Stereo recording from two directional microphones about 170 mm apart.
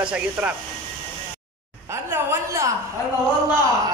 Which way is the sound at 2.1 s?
15° right (ahead or behind).